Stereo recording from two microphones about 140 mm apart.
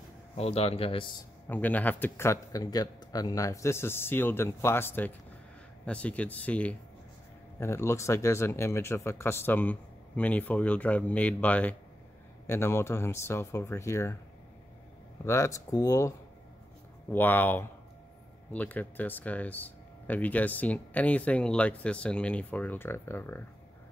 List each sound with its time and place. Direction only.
0.4 s speech: 45° left (ahead or behind)
1.5 s speech: 10° left (ahead or behind)
15.2 s speech: 20° left (ahead or behind)